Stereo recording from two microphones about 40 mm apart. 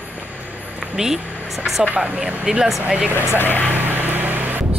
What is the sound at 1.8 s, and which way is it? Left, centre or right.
Speech, right.